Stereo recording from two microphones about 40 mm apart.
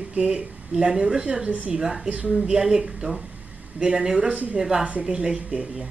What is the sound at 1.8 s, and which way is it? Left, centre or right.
Speech, centre.